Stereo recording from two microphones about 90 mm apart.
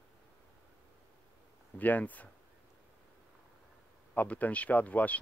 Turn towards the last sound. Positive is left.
turn(degrees=15)  # may be behind; listen again after turning